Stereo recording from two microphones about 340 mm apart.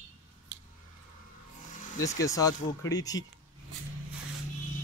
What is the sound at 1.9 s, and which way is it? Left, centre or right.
Speech, centre.